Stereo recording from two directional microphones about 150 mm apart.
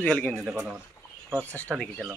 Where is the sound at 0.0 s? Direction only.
10° left (ahead or behind).